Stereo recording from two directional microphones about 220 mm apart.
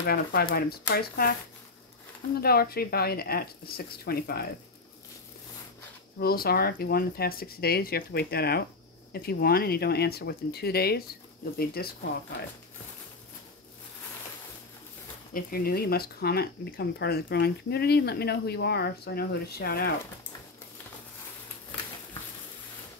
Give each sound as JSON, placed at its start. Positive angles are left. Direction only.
{"t": 0.0, "sound": "speech", "side_deg": 45}
{"t": 2.4, "sound": "speech", "side_deg": 45}
{"t": 6.1, "sound": "speech", "side_deg": 45}
{"t": 15.3, "sound": "speech", "side_deg": 40}